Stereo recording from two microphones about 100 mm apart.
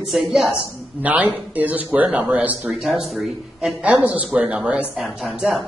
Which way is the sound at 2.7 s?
Centre (ahead or behind).